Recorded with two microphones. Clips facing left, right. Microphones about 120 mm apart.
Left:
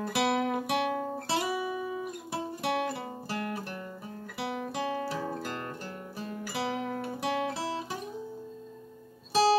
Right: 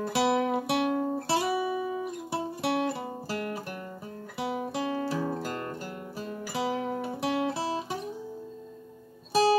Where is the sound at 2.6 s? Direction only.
25° right (ahead or behind).